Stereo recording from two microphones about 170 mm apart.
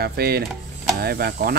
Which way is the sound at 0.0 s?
65° right (ahead or behind).